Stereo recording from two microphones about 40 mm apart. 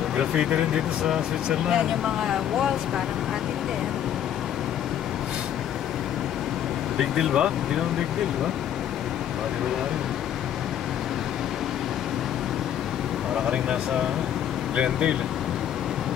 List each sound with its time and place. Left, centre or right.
0.2 s speech: centre
7.0 s speech: centre
14.8 s speech: right